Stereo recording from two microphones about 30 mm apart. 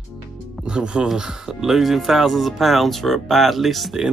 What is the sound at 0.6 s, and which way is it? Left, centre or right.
Music, right.